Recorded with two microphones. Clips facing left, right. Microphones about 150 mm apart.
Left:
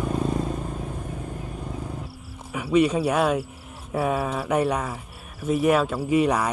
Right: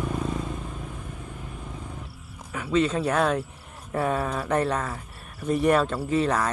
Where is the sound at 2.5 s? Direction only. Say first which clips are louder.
Left 3 dB; 10° left (ahead or behind).